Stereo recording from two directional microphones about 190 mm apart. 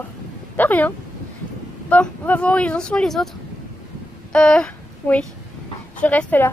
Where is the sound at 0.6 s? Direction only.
10° left (ahead or behind).